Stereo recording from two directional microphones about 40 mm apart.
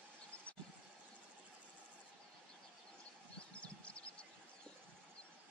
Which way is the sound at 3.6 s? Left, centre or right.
Left.